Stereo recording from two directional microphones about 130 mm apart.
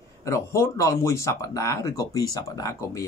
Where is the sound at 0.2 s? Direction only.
20° left (ahead or behind).